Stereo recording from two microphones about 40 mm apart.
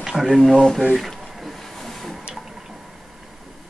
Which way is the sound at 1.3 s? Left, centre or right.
Centre.